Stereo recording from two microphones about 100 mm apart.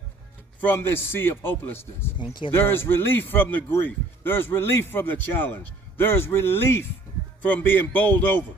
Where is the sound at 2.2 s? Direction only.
55° left (ahead or behind).